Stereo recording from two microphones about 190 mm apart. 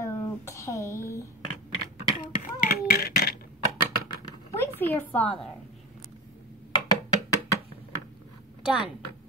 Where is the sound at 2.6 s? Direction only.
50° left (ahead or behind).